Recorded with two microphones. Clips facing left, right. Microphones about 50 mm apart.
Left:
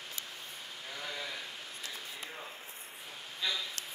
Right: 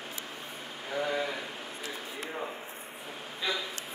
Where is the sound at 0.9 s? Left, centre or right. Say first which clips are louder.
Right 11 dB; right.